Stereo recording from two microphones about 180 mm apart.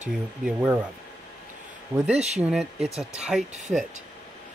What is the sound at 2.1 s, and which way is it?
Speech, 40° right (ahead or behind).